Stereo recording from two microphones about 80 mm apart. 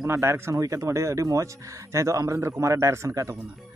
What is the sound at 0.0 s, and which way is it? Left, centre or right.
Speech, right.